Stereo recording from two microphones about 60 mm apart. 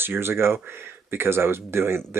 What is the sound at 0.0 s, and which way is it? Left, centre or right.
Speech, right.